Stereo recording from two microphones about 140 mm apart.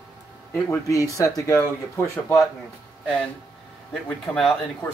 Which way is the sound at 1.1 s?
20° left (ahead or behind).